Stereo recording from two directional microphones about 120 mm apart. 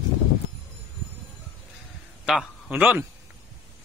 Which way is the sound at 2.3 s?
10° right (ahead or behind).